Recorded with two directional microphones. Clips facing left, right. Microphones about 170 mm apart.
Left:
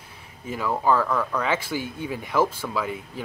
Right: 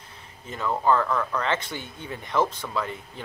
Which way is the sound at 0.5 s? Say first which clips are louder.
Left 1 dB; 5° left (ahead or behind).